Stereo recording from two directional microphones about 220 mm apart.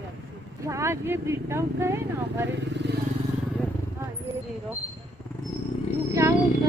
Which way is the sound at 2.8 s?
50° right (ahead or behind).